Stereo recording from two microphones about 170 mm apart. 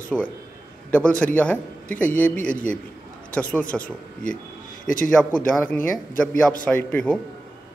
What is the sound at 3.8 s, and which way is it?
A man's voice, 55° left (ahead or behind).